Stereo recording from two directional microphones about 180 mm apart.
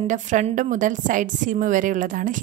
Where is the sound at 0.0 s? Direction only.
45° right (ahead or behind).